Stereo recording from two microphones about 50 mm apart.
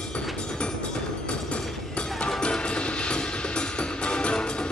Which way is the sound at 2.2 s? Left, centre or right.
Centre.